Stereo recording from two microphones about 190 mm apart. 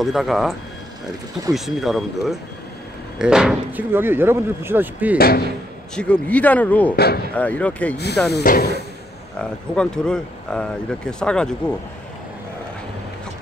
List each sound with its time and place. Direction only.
0.0 s speech: centre (ahead or behind)
5.1 s speech: 55° left (ahead or behind)
5.9 s speech: 5° left (ahead or behind)
8.3 s speech: 55° left (ahead or behind)
9.4 s speech: 5° left (ahead or behind)